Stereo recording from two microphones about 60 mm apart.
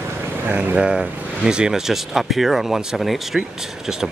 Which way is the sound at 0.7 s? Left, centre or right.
Centre.